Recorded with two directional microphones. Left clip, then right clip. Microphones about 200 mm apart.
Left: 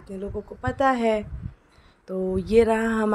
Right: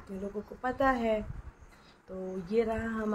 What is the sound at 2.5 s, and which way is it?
Speech, 50° left (ahead or behind).